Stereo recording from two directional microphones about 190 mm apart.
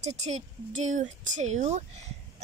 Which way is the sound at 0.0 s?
35° right (ahead or behind).